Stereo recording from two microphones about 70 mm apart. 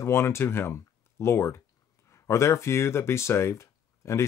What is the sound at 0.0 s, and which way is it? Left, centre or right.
Speech, left.